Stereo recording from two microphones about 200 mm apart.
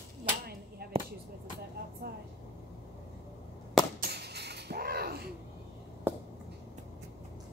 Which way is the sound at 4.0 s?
55° right (ahead or behind).